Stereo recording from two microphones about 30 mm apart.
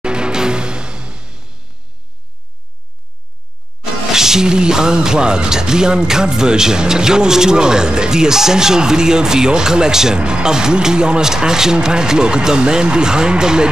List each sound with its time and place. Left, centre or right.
0.0 s music: right
4.1 s speech: centre
10.1 s speech: right